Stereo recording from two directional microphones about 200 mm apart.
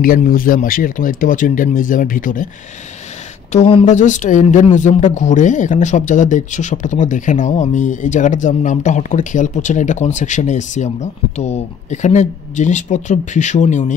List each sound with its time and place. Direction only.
0.0 s speech: 45° left (ahead or behind)
3.5 s speech: 35° left (ahead or behind)